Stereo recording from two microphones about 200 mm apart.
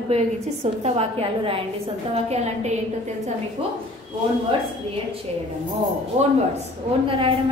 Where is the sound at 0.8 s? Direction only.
30° right (ahead or behind).